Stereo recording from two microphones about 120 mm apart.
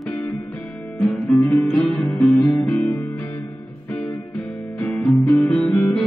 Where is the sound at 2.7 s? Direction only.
15° left (ahead or behind).